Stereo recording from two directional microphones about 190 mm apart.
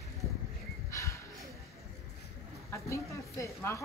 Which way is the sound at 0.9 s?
15° left (ahead or behind).